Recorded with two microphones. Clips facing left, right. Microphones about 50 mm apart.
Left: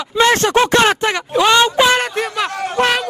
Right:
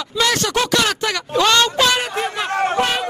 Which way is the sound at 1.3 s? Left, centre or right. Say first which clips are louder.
Left 3 dB; centre.